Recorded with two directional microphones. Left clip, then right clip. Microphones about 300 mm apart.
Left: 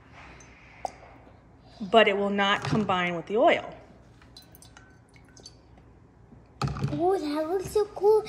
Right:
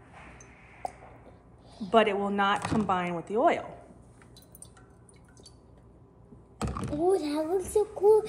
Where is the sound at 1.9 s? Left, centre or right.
Centre.